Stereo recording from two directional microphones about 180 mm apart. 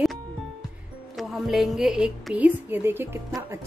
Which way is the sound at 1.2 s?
Centre (ahead or behind).